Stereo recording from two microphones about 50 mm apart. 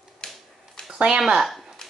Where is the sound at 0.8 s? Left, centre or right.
Centre.